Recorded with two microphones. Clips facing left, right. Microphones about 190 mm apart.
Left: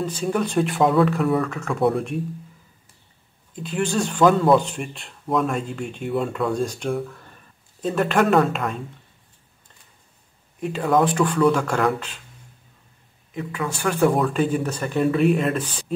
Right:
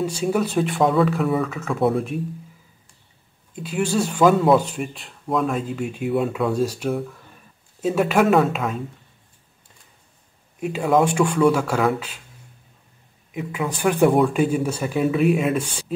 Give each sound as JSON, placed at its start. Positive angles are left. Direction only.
{"t": 0.0, "sound": "speech", "side_deg": -10}
{"t": 3.5, "sound": "speech", "side_deg": -5}
{"t": 10.6, "sound": "speech", "side_deg": -5}
{"t": 13.3, "sound": "speech", "side_deg": -15}
{"t": 14.0, "sound": "speech", "side_deg": 0}